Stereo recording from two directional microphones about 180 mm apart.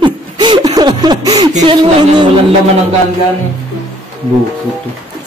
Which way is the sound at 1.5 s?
35° right (ahead or behind).